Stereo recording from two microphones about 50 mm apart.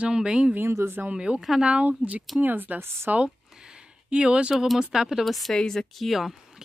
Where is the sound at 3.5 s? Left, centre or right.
Centre.